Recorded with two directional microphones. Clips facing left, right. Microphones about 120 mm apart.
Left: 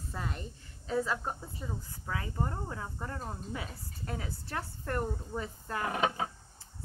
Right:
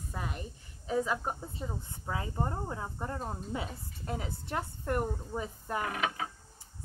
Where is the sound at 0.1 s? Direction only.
15° right (ahead or behind).